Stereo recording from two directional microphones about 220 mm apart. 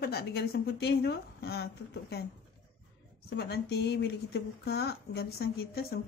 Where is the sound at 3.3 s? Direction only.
50° left (ahead or behind).